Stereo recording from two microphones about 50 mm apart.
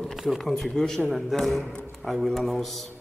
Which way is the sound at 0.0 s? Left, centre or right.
Centre.